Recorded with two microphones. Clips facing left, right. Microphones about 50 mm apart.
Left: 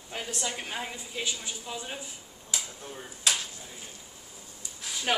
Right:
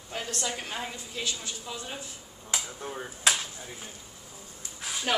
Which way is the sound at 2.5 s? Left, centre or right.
Right.